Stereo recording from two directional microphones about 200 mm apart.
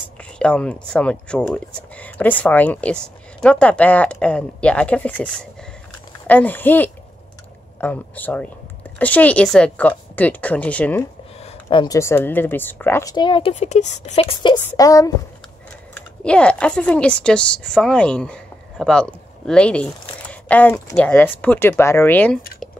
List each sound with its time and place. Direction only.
0.4 s a woman's voice: 5° left (ahead or behind)
11.7 s a woman's voice: 20° left (ahead or behind)
15.9 s speech: 5° left (ahead or behind)